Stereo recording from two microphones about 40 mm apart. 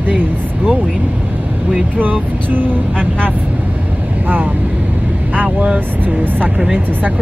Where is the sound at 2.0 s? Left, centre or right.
Right.